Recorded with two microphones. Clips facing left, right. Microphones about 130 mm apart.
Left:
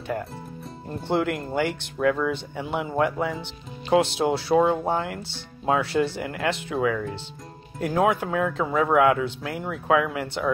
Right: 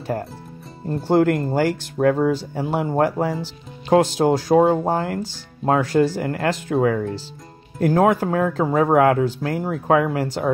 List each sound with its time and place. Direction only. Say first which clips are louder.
0.0 s speech: right 3 dB; 35° right (ahead or behind)